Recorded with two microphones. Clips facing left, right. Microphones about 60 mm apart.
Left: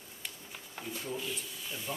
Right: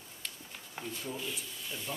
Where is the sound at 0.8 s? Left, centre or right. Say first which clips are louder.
Left 1 dB; centre.